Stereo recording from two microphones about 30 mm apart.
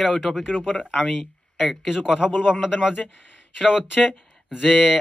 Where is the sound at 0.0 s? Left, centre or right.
Centre.